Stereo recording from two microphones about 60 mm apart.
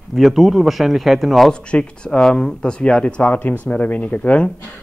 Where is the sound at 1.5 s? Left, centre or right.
Centre.